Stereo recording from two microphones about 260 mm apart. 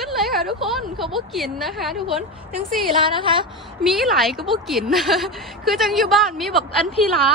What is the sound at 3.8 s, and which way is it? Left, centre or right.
A woman's voice, centre.